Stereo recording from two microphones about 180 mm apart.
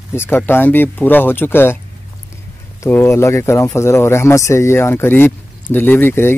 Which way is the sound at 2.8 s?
15° left (ahead or behind).